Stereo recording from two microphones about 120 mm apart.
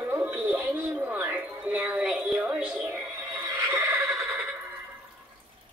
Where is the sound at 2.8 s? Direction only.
20° right (ahead or behind).